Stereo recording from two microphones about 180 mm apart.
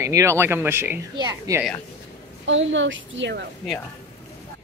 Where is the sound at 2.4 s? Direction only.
90° right.